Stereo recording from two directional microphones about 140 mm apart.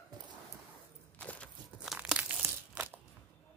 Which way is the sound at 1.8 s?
5° right (ahead or behind).